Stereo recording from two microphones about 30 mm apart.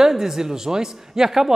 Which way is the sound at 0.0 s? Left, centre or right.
Centre.